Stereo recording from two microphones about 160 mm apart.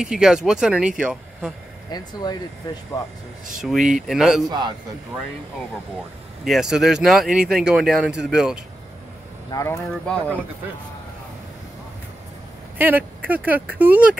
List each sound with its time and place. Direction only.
0.0 s speech: 5° right (ahead or behind)
1.9 s speech: 25° left (ahead or behind)
3.6 s speech: 5° right (ahead or behind)
4.5 s a man's voice: 25° right (ahead or behind)
6.4 s speech: centre (ahead or behind)
9.5 s speech: 20° left (ahead or behind)
9.8 s speech: 5° left (ahead or behind)
12.7 s a sound: 10° right (ahead or behind)
13.7 s speech: 10° right (ahead or behind)